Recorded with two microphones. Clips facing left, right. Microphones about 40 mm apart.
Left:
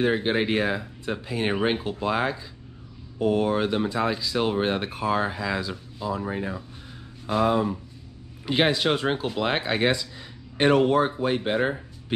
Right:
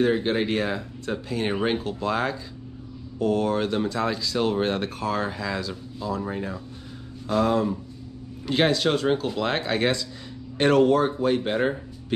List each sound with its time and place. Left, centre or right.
0.0 s speech: centre